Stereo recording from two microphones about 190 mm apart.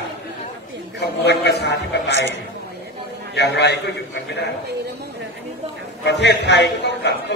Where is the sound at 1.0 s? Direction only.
60° left (ahead or behind).